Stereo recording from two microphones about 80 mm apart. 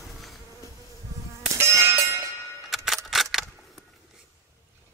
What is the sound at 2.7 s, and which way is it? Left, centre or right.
Camera, centre.